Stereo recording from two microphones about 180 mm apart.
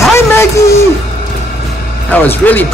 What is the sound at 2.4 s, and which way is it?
Speech, 10° left (ahead or behind).